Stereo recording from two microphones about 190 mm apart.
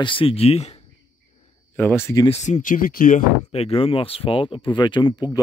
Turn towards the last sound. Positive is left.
turn(degrees=20)  # may be behind; listen again after turning